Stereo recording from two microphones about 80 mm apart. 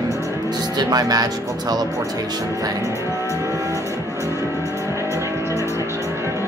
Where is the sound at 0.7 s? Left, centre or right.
Right.